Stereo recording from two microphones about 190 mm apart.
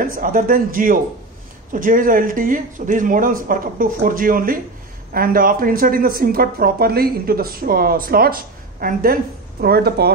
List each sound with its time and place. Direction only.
0.0 s speech: 50° right (ahead or behind)